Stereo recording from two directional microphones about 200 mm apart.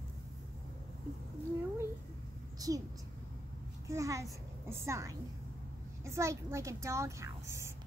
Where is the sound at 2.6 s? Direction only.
20° right (ahead or behind).